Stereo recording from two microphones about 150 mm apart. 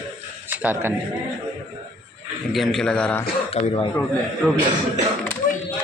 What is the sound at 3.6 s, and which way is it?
Speech, 45° left (ahead or behind).